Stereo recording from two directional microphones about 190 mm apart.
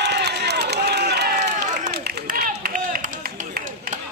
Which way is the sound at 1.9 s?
55° right (ahead or behind).